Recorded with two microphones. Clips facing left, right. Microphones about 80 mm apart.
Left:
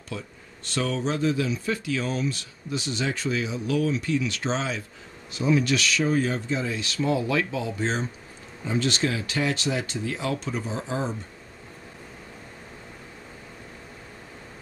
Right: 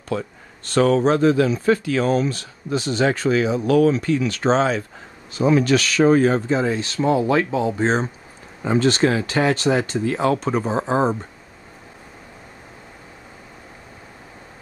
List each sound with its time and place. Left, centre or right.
0.1 s speech: right
3.1 s speech: right